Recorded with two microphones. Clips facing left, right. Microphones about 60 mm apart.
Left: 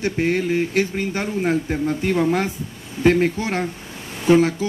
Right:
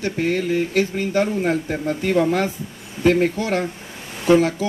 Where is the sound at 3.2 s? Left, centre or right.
Left.